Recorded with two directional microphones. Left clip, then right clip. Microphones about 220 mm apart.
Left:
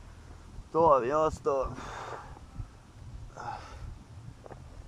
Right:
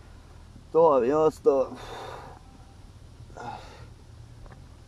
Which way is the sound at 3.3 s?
15° right (ahead or behind).